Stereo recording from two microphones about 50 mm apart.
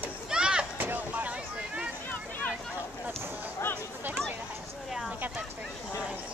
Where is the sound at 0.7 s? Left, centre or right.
Right.